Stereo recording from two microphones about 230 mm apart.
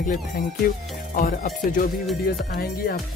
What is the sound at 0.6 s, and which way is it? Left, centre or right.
Music, left.